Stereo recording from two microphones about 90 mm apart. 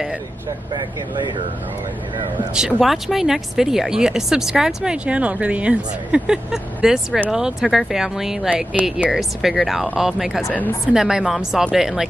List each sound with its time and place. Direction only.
0.7 s speech: 60° right (ahead or behind)
2.5 s speech: 5° right (ahead or behind)